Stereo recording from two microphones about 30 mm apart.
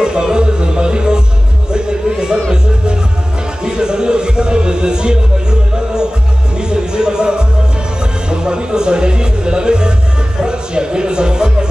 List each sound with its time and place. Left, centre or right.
0.0 s music: right
3.6 s music: right